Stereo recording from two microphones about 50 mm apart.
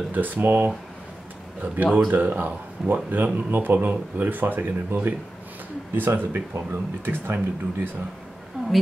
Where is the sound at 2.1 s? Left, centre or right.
Right.